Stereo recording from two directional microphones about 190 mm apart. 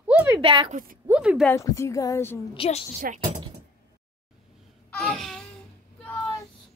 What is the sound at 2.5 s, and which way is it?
Speech, 30° left (ahead or behind).